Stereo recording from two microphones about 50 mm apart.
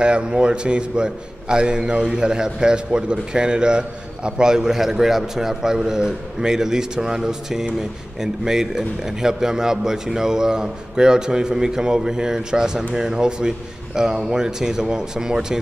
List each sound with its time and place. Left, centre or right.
0.0 s a man's voice: centre